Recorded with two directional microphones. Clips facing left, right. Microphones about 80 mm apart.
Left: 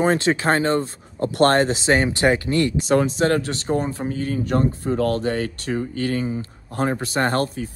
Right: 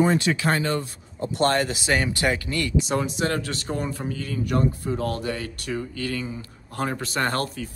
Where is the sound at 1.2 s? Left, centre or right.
Left.